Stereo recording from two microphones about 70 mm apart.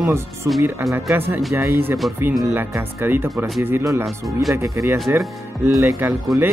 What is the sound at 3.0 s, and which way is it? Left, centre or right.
Speech, right.